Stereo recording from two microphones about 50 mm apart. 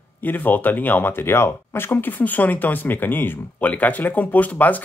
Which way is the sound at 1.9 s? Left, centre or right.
Left.